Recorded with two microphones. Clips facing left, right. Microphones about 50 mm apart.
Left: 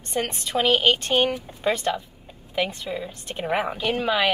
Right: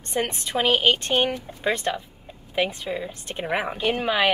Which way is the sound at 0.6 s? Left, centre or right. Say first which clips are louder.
Left 1 dB; centre.